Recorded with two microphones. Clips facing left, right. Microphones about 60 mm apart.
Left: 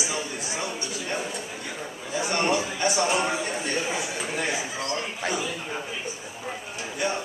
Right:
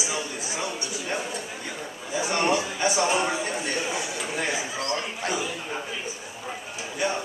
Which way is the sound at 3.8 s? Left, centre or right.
Left.